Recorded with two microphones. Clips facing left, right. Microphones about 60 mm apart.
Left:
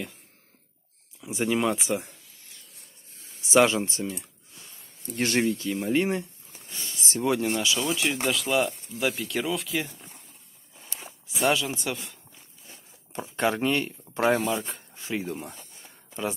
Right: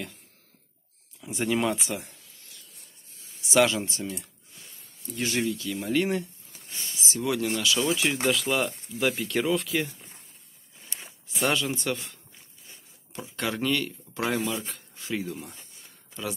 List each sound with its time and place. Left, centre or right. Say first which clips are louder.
1.4 s speech: left 1 dB; centre
1.8 s speech: left 5 dB; left
3.3 s speech: left 2 dB; left
5.1 s speech: left 3 dB; left
5.4 s speech: left 3 dB; left; by 7.8 s centre
7.8 s speech: right 1 dB; centre
11.4 s speech: left 1 dB; centre
13.1 s speech: left 5 dB; left
14.7 s a sound: left 1 dB; left